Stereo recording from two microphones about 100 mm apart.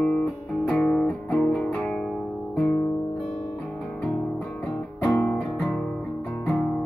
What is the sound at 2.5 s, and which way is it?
Guitar, 15° left (ahead or behind).